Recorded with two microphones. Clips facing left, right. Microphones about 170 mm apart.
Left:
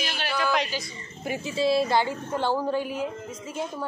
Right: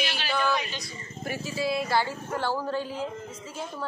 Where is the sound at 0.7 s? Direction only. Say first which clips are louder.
Left 5 dB; centre (ahead or behind).